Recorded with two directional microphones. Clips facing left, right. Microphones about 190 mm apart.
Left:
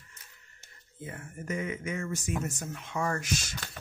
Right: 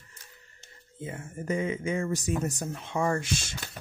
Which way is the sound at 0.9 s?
25° right (ahead or behind).